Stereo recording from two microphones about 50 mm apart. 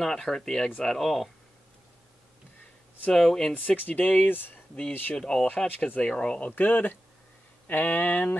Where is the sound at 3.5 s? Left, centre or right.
Left.